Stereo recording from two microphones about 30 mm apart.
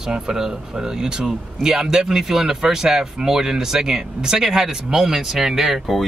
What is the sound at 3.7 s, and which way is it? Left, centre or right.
Speech, right.